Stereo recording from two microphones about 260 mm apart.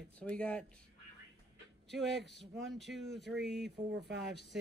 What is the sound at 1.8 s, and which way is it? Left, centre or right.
Speech, centre.